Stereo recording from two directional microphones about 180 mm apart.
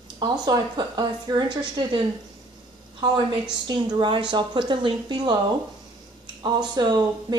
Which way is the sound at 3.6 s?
25° right (ahead or behind).